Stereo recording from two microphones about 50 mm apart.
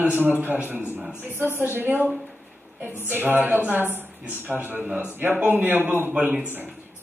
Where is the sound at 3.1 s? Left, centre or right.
Right.